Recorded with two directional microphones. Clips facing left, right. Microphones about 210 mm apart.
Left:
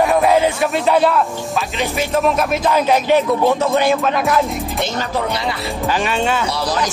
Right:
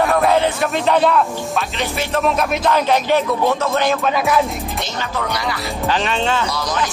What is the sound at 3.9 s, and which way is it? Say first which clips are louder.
Music: left 1 dB; centre (ahead or behind).